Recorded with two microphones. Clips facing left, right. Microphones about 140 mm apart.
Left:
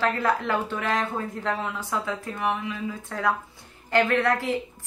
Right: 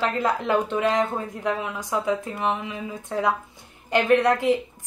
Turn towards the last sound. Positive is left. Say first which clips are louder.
# right 5 dB
turn(degrees=-20)  # may be behind; listen again after turning